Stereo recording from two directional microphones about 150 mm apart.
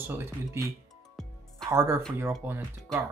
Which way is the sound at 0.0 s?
15° right (ahead or behind).